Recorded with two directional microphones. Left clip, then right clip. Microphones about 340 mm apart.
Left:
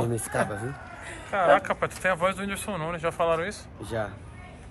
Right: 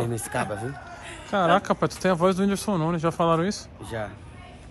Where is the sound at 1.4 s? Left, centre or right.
Centre.